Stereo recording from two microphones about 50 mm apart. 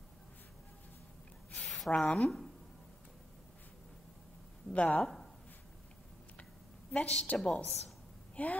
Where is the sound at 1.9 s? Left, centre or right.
Centre.